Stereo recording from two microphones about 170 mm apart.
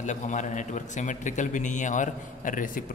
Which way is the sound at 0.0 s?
45° left (ahead or behind).